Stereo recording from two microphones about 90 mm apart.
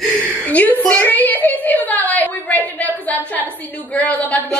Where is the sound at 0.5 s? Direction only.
15° left (ahead or behind).